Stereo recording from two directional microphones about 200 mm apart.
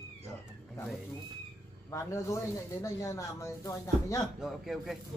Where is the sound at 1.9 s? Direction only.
15° left (ahead or behind).